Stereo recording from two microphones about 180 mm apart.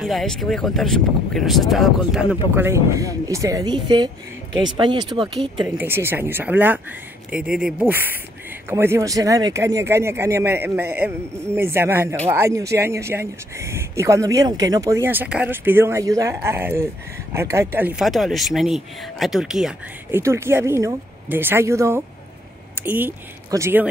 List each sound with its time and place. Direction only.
0.0 s speech: centre (ahead or behind); by 5.7 s 25° right (ahead or behind)
5.8 s speech: 15° right (ahead or behind)
20.2 s speech: 15° right (ahead or behind)